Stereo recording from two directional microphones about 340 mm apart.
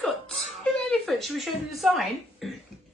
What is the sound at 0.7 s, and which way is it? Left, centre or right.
Speech, centre.